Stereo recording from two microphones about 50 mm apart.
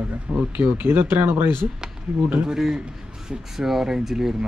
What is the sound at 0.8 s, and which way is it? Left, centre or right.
Speech, right.